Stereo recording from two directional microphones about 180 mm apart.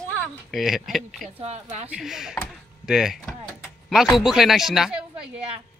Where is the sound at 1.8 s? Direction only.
5° right (ahead or behind).